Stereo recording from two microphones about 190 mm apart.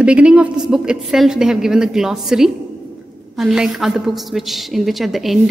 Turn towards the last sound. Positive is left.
turn(degrees=0)  # may be behind; listen again after turning